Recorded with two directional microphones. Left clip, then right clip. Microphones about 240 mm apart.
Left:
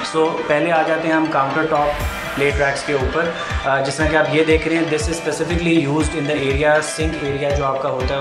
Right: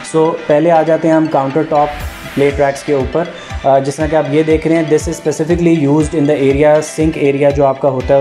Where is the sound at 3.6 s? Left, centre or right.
Right.